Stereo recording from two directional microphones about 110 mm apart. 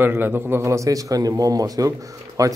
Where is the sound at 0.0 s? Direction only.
20° right (ahead or behind).